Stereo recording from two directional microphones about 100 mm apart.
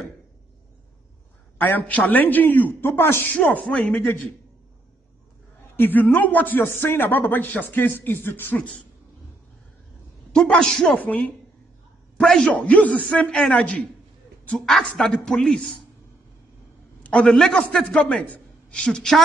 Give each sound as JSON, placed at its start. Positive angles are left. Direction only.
{"t": 1.6, "sound": "a woman's voice", "side_deg": 20}
{"t": 5.8, "sound": "speech", "side_deg": 20}
{"t": 10.3, "sound": "a woman's voice", "side_deg": 10}
{"t": 17.0, "sound": "a man's voice", "side_deg": 10}